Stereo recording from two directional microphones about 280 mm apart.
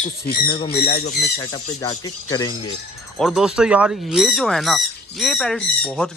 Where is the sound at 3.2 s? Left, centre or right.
Centre.